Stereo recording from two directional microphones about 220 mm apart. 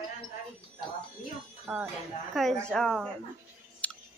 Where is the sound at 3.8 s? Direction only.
5° left (ahead or behind).